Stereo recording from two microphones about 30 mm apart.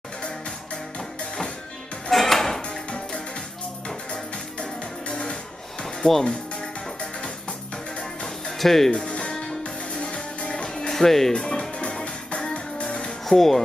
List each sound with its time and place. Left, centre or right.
0.9 s music: left
2.0 s music: centre
3.8 s music: left
8.5 s speech: centre
9.3 s music: centre
9.6 s music: left
10.9 s speech: centre
11.3 s music: left
11.9 s music: left
13.2 s speech: centre